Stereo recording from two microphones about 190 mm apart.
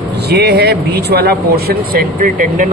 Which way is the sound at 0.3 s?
60° right (ahead or behind).